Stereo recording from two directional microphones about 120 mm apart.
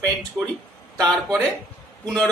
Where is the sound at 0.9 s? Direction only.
5° left (ahead or behind).